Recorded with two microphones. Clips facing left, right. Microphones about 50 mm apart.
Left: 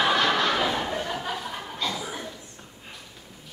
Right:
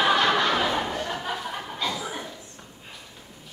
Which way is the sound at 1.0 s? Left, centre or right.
Centre.